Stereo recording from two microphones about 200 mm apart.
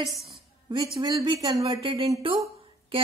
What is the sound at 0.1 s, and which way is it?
Speech, centre (ahead or behind).